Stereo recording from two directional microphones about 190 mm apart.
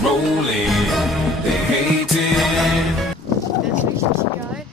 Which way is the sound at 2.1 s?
Centre (ahead or behind).